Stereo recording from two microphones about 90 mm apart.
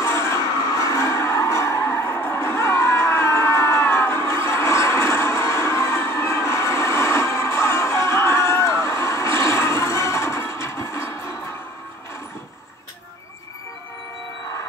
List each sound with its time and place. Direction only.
0.0 s music: 35° left (ahead or behind)